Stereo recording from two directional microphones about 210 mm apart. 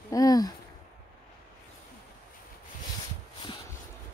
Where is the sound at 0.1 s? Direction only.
15° left (ahead or behind).